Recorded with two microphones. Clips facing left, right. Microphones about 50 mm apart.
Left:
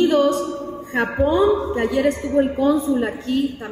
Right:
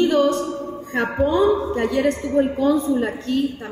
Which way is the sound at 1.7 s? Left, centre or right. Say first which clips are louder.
Left 1 dB; centre.